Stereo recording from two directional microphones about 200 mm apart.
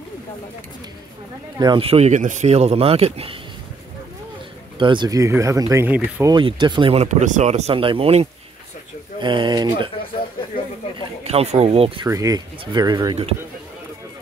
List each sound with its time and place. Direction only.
1.6 s speech: 25° right (ahead or behind)
4.7 s speech: 25° right (ahead or behind); by 6.3 s 10° right (ahead or behind)
6.3 s speech: 20° right (ahead or behind)
11.0 s speech: 30° right (ahead or behind)
12.1 s speech: 15° right (ahead or behind)